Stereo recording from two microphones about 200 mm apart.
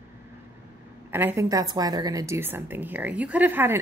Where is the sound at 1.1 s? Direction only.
15° right (ahead or behind).